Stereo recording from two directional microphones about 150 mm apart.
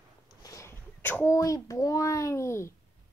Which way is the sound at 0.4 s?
20° left (ahead or behind).